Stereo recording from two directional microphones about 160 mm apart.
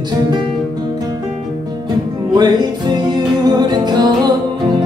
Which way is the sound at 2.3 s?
25° right (ahead or behind).